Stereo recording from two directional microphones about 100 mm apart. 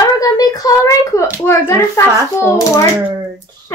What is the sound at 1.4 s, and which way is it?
A child's voice, 25° left (ahead or behind).